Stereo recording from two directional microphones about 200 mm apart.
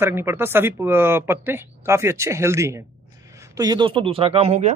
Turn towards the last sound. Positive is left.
turn(degrees=-30)  # may be behind; listen again after turning